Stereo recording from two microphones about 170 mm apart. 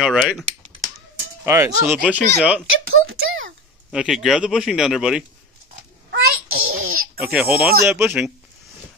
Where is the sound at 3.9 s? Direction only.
5° right (ahead or behind).